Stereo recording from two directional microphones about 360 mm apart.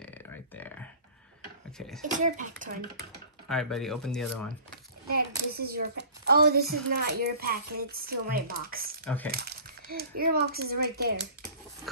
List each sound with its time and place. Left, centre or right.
0.6 s a sound: centre
2.1 s a woman's voice: right
3.4 s speech: centre
5.5 s a woman's voice: right
9.0 s speech: centre
9.3 s a woman's voice: right